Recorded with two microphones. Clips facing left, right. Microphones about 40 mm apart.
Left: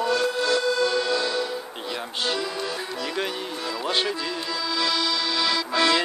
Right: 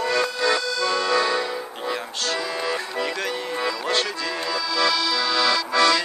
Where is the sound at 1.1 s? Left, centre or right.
Right.